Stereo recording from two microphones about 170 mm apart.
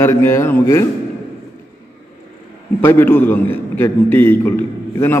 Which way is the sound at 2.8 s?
10° left (ahead or behind).